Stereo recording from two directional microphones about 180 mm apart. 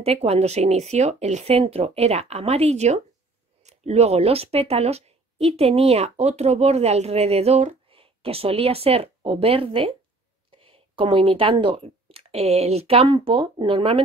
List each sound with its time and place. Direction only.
0.0 s a woman's voice: 35° right (ahead or behind)